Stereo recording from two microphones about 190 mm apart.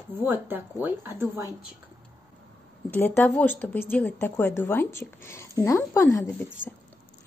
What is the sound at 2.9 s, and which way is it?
A woman's voice, 10° left (ahead or behind).